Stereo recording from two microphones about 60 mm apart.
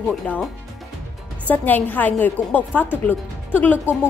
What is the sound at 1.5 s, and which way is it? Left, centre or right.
A woman's voice, left.